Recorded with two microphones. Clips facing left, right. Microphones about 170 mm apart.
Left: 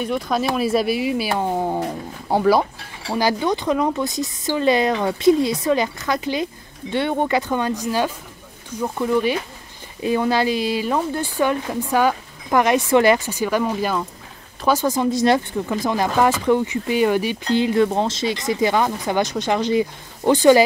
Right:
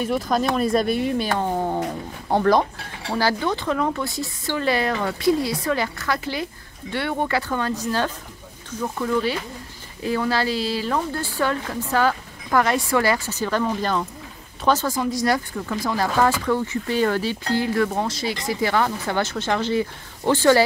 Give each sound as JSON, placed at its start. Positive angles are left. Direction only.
{"t": 0.0, "sound": "speech", "side_deg": 0}
{"t": 15.0, "sound": "speech", "side_deg": 25}